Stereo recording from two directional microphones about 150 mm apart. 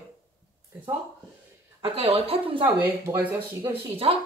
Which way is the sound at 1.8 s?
35° right (ahead or behind).